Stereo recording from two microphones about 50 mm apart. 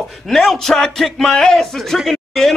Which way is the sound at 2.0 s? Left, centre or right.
Centre.